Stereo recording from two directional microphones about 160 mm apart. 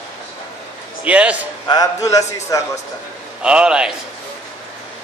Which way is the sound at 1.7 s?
20° left (ahead or behind).